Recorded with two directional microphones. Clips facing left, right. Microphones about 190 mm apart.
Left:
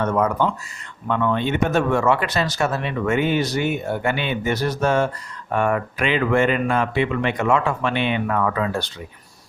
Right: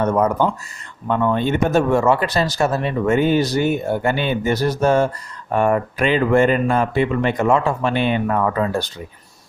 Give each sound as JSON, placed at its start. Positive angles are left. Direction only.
{"t": 0.0, "sound": "speech", "side_deg": -40}